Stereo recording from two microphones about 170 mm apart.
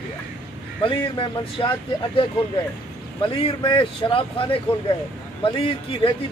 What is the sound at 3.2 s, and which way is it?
Speech, 30° left (ahead or behind).